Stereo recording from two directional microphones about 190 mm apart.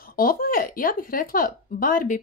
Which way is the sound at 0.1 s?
50° left (ahead or behind).